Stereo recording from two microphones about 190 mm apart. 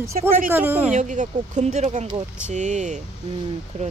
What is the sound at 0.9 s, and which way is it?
Speech, 40° right (ahead or behind).